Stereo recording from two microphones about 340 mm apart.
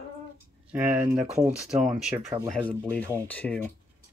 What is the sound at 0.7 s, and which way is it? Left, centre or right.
Speech, centre.